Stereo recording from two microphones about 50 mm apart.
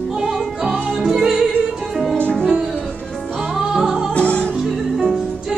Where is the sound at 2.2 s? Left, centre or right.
Centre.